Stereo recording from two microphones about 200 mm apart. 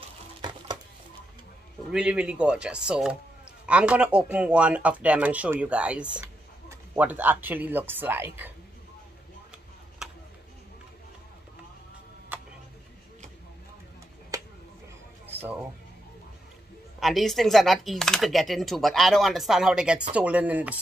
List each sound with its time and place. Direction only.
1.9 s speech: 5° right (ahead or behind)
12.3 s tick-tock: 10° right (ahead or behind)
14.3 s a sound: 20° right (ahead or behind)
17.0 s speech: centre (ahead or behind)